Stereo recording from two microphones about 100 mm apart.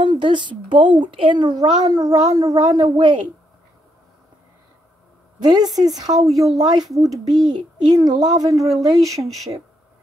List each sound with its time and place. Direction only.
0.0 s speech: 55° right (ahead or behind)
5.4 s speech: 45° right (ahead or behind)
6.3 s speech: centre (ahead or behind)
6.6 s speech: 40° right (ahead or behind)
7.2 s speech: 5° right (ahead or behind)
7.9 s speech: 45° right (ahead or behind)